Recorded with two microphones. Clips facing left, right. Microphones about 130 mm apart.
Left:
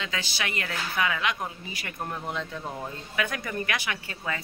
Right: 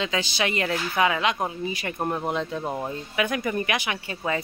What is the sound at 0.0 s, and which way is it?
Speech, 20° right (ahead or behind).